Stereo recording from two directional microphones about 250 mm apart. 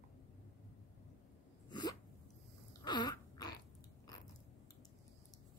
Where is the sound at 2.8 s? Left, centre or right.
Centre.